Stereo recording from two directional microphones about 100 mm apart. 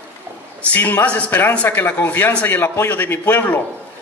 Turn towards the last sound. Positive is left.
turn(degrees=20)  # may be behind; listen again after turning